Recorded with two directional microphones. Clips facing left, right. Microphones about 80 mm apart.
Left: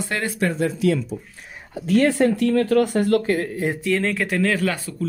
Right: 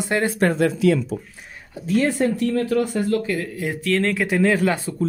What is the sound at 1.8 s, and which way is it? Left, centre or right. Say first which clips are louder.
Speech: left 2 dB; left.